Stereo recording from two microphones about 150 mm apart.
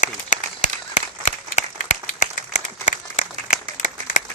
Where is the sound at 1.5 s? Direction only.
50° left (ahead or behind).